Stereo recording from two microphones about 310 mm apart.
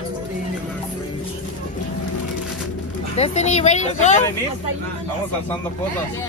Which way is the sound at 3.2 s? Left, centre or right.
Left.